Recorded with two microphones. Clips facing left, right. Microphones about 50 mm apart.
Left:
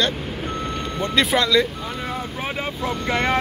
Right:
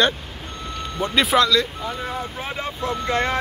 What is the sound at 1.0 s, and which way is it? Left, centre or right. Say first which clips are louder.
Speech: right 2 dB; centre.